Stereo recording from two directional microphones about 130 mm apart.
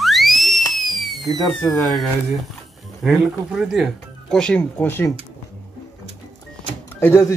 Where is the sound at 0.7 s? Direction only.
Centre (ahead or behind).